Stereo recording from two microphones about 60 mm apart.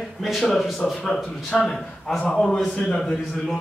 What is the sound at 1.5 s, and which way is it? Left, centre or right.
A man's voice, centre.